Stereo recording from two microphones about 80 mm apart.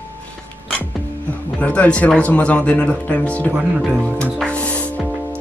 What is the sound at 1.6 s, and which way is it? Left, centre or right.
Speech, centre.